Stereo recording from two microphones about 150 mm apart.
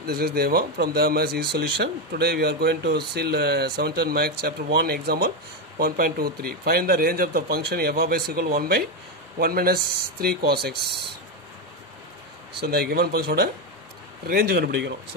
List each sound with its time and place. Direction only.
0.0 s speech: 90° right
12.5 s speech: 90° right